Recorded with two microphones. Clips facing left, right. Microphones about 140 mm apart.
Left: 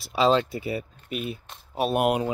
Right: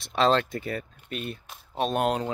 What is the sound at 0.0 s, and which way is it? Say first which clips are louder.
Speech: left 2 dB; 5° left (ahead or behind).